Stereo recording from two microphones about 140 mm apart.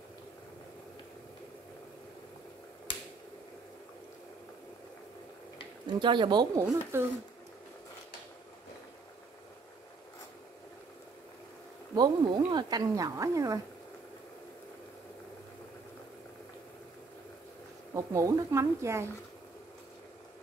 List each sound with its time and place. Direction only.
5.9 s speech: 35° right (ahead or behind)
6.6 s speech: 15° right (ahead or behind)
11.9 s speech: 30° right (ahead or behind)
17.9 s speech: 25° right (ahead or behind)